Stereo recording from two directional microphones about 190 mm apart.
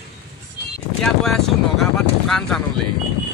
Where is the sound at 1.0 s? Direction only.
Centre (ahead or behind).